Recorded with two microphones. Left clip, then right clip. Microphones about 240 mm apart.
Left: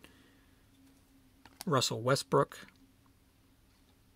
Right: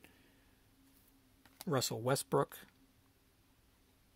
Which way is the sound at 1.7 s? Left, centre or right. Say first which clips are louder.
Left 5 dB; centre.